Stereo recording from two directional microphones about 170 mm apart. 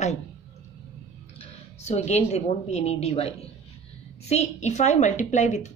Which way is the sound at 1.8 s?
40° left (ahead or behind).